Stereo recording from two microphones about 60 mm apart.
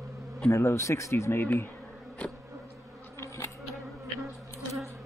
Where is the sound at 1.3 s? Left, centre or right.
Left.